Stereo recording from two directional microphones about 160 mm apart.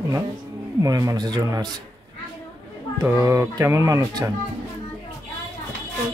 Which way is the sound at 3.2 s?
15° right (ahead or behind).